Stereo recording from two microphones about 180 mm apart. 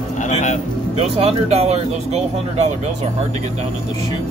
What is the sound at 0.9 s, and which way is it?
Speech, 35° right (ahead or behind).